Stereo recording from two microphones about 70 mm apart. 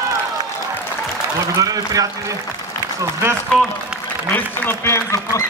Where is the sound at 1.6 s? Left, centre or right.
Right.